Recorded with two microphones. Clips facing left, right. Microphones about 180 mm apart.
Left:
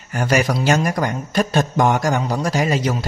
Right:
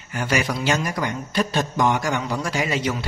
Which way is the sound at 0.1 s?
45° left (ahead or behind).